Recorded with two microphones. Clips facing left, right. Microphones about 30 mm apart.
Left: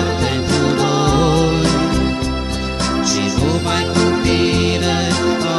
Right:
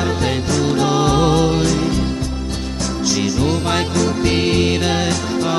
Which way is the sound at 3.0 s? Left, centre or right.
Centre.